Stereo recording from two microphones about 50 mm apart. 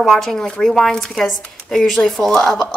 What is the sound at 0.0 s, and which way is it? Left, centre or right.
Speech, centre.